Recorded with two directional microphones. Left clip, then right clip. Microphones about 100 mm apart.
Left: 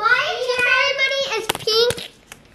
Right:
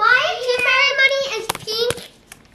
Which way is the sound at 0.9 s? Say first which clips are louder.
Right 4 dB; 20° right (ahead or behind).